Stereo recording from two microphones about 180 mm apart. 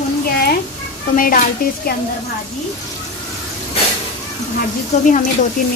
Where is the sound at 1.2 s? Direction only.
50° left (ahead or behind).